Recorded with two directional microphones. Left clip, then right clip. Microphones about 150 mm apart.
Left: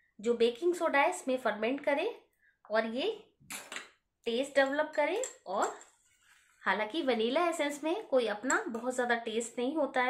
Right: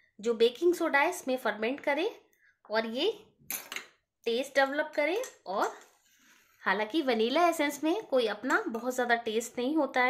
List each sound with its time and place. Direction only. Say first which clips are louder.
0.2 s a woman's voice: right 3 dB; 45° right (ahead or behind)
4.2 s a woman's voice: right 2 dB; 45° right (ahead or behind)